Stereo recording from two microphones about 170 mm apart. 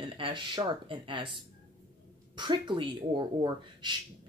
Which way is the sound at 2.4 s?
25° right (ahead or behind).